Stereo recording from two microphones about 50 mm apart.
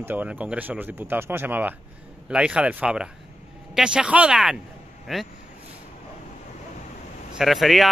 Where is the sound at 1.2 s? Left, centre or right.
Right.